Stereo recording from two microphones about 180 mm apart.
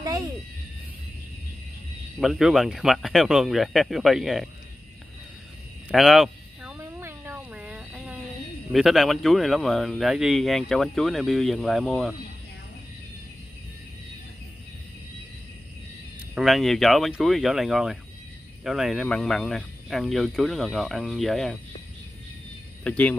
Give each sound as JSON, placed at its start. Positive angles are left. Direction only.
{"t": 2.1, "sound": "speech", "side_deg": 0}
{"t": 5.9, "sound": "a sound", "side_deg": 0}
{"t": 6.8, "sound": "a sound", "side_deg": -15}
{"t": 8.7, "sound": "speech", "side_deg": 0}
{"t": 16.3, "sound": "speech", "side_deg": 0}
{"t": 22.8, "sound": "speech", "side_deg": 5}